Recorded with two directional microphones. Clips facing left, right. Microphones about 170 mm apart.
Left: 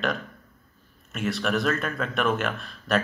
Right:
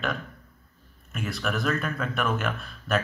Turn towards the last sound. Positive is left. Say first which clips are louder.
# left 2 dB
turn(degrees=0)  # may be behind; listen again after turning